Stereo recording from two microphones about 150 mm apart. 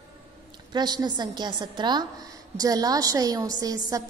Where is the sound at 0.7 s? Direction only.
30° right (ahead or behind).